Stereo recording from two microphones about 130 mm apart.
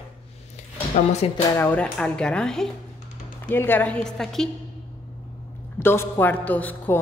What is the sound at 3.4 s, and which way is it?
Speech, 15° left (ahead or behind).